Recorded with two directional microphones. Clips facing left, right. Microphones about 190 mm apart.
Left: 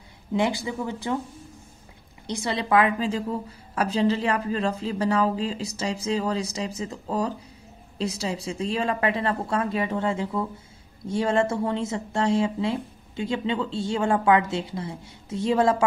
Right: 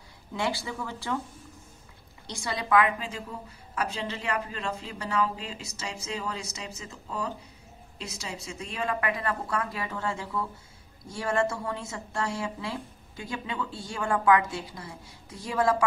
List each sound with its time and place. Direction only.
0.3 s speech: 20° left (ahead or behind)
2.2 s a woman's voice: 20° left (ahead or behind)